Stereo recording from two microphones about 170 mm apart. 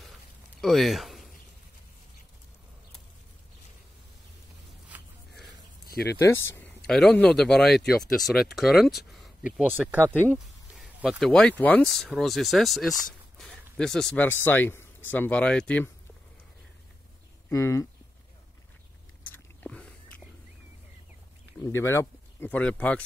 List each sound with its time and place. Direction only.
0.6 s a sound: centre (ahead or behind)
4.8 s a sound: 5° right (ahead or behind)
6.1 s speech: 15° left (ahead or behind)
6.9 s speech: 5° left (ahead or behind)
17.5 s speech: 15° left (ahead or behind)
19.3 s biting: 10° left (ahead or behind)
21.5 s speech: 15° left (ahead or behind)